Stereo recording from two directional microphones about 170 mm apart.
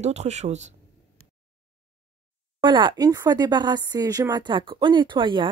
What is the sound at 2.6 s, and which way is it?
Speech, 30° right (ahead or behind).